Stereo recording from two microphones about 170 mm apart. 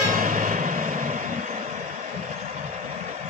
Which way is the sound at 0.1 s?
50° right (ahead or behind).